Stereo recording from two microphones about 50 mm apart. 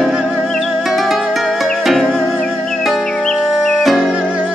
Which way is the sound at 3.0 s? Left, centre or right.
Centre.